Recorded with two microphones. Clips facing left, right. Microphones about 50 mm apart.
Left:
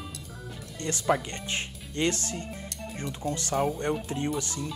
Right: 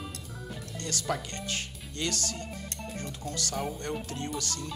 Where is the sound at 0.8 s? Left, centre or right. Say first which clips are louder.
Left 7 dB; left.